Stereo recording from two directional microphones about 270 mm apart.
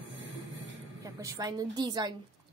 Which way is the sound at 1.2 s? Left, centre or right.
Centre.